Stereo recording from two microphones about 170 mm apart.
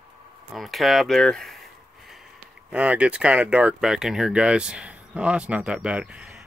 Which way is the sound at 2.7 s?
10° right (ahead or behind).